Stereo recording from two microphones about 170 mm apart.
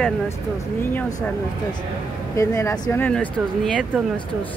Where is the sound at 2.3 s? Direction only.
15° left (ahead or behind).